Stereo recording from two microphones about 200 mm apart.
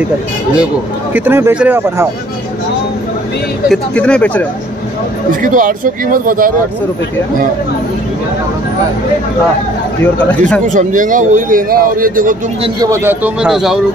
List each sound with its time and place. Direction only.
1.1 s a man's voice: 10° right (ahead or behind)
3.6 s speech: 5° left (ahead or behind)
5.3 s speech: 40° right (ahead or behind)
10.7 s a man's voice: 40° right (ahead or behind)
12.6 s a man's voice: 15° right (ahead or behind)